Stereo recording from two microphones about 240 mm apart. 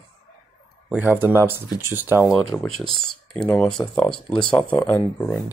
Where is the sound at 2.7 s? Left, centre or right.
Right.